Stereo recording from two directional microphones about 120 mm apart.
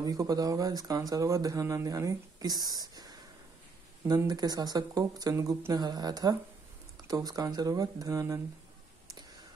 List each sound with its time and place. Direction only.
0.0 s speech: 30° right (ahead or behind)
4.3 s speech: 35° right (ahead or behind)